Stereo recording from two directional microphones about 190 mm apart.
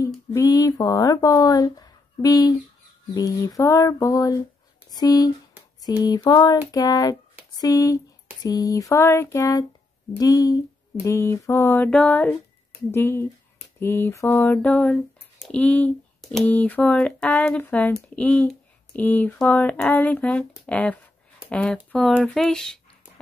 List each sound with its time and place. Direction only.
0.0 s speech: 20° left (ahead or behind)
3.2 s a sound: 15° left (ahead or behind)
21.5 s speech: 5° left (ahead or behind)